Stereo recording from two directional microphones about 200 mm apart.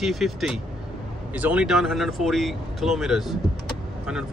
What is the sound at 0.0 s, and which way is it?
Speech, centre (ahead or behind).